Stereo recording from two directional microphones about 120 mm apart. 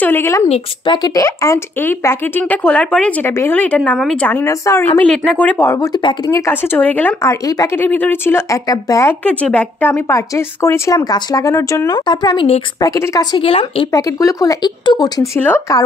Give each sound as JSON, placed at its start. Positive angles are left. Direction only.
{"t": 0.0, "sound": "speech", "side_deg": 15}
{"t": 0.8, "sound": "a woman's voice", "side_deg": 35}
{"t": 4.5, "sound": "speech", "side_deg": 25}
{"t": 5.1, "sound": "speech", "side_deg": 10}
{"t": 5.9, "sound": "speech", "side_deg": 40}
{"t": 6.3, "sound": "speech", "side_deg": 20}
{"t": 7.2, "sound": "speech", "side_deg": 30}
{"t": 7.7, "sound": "speech", "side_deg": 15}
{"t": 9.2, "sound": "speech", "side_deg": 10}
{"t": 11.1, "sound": "speech", "side_deg": 30}
{"t": 12.1, "sound": "speech", "side_deg": 35}
{"t": 13.4, "sound": "speech", "side_deg": 50}
{"t": 13.9, "sound": "speech", "side_deg": 25}
{"t": 15.3, "sound": "speech", "side_deg": 20}